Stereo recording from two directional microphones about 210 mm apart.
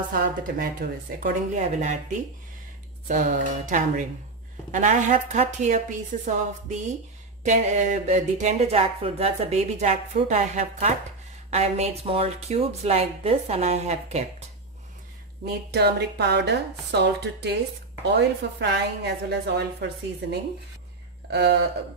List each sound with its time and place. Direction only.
0.1 s speech: 45° right (ahead or behind)
3.1 s a woman's voice: 40° right (ahead or behind)
15.7 s a woman's voice: 50° right (ahead or behind)
21.3 s a sound: 50° right (ahead or behind)